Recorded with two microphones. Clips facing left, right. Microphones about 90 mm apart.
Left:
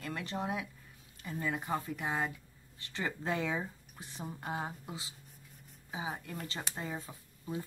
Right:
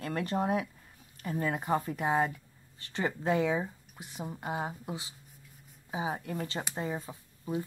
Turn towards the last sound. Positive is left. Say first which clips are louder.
# right 5 dB
turn(degrees=-20)  # may be behind; listen again after turning